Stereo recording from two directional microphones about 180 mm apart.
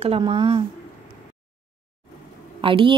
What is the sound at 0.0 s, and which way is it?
Speech, 30° right (ahead or behind).